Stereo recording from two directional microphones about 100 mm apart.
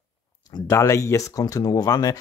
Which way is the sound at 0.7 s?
30° left (ahead or behind).